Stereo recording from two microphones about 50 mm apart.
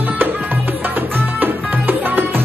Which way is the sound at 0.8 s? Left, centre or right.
Right.